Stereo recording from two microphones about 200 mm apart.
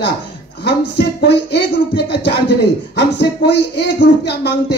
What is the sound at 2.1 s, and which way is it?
Speech, 55° left (ahead or behind).